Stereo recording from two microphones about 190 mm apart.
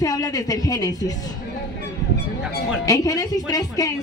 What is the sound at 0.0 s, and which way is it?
A woman's voice, 20° left (ahead or behind).